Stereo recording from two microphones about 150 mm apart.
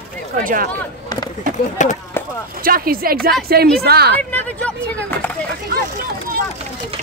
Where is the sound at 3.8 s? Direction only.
90° right.